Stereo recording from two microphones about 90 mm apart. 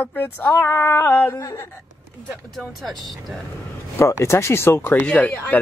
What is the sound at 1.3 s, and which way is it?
Speech, 35° left (ahead or behind).